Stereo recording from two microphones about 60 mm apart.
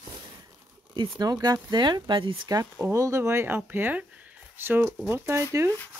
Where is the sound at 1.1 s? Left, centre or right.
Right.